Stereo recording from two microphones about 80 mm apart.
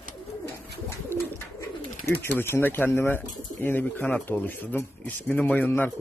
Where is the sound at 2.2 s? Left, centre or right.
Left.